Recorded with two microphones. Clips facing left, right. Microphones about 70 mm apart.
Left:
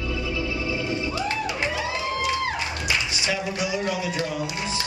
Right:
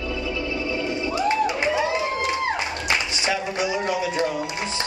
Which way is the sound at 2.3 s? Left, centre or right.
Right.